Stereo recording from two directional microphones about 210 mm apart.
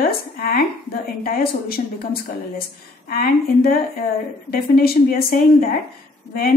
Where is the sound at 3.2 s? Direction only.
45° left (ahead or behind).